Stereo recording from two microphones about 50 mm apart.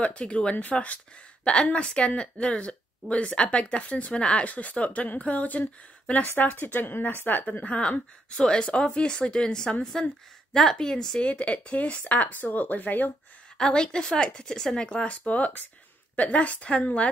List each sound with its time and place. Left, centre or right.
0.0 s a woman's voice: left
7.6 s a woman's voice: left
11.2 s a woman's voice: left
12.2 s speech: left
13.6 s a woman's voice: centre
14.9 s a woman's voice: left